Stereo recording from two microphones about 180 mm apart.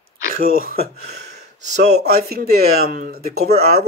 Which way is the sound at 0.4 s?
55° right (ahead or behind).